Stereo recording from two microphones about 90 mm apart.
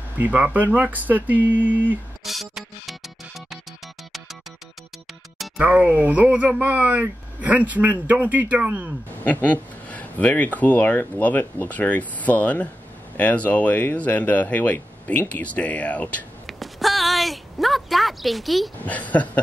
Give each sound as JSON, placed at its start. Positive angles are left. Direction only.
{"t": 0.2, "sound": "speech", "side_deg": -15}
{"t": 1.5, "sound": "a sound", "side_deg": -20}
{"t": 2.2, "sound": "music", "side_deg": 0}
{"t": 5.6, "sound": "speech", "side_deg": -15}
{"t": 9.2, "sound": "speech", "side_deg": 15}
{"t": 16.4, "sound": "a sound", "side_deg": 0}
{"t": 18.9, "sound": "speech", "side_deg": 15}